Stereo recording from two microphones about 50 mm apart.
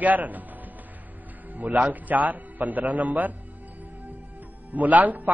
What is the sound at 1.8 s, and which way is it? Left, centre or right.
Speech, right.